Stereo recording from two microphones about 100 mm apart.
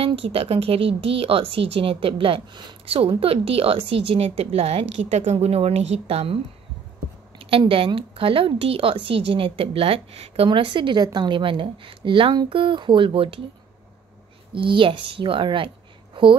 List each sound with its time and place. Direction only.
0.0 s a woman's voice: 70° right (ahead or behind)
7.3 s a woman's voice: 65° right (ahead or behind)
14.5 s a woman's voice: 60° right (ahead or behind)